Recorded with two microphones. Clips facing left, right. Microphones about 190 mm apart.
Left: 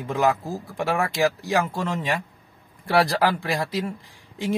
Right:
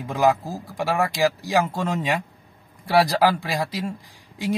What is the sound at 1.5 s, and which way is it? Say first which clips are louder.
A man's voice: right 2 dB; 15° right (ahead or behind).